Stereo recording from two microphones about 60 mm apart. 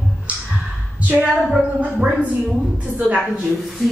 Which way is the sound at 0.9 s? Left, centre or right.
Right.